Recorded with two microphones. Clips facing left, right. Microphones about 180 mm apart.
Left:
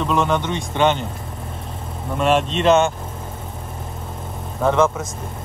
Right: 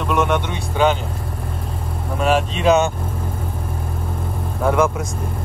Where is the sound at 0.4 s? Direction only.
5° right (ahead or behind).